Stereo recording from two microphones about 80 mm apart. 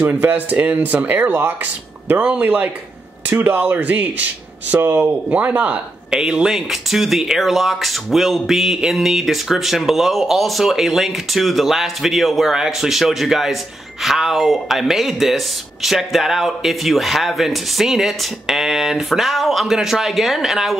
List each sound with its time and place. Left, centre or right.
0.0 s speech: right; by 20.7 s centre